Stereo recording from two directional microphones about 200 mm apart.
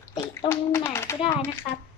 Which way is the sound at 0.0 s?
15° left (ahead or behind).